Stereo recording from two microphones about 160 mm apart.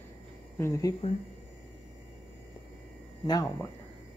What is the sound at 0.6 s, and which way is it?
Speech, 20° left (ahead or behind).